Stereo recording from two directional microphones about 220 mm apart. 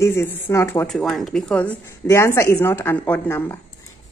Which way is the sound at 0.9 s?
Centre (ahead or behind).